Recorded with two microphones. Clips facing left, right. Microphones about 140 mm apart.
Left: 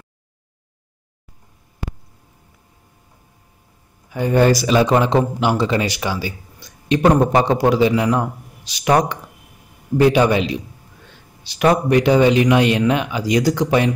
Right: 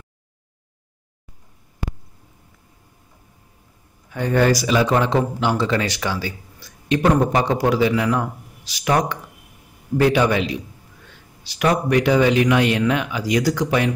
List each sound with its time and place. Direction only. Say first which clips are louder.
4.1 s a man's voice: left 3 dB; 10° left (ahead or behind)
4.4 s speech: left 3 dB; 25° left (ahead or behind)
9.9 s speech: left 3 dB; 20° left (ahead or behind)